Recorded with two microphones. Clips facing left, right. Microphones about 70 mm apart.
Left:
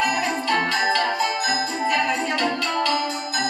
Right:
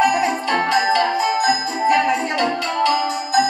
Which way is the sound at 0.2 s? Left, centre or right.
Centre.